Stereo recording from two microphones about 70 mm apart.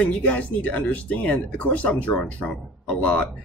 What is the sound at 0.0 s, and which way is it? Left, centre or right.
Speech, centre.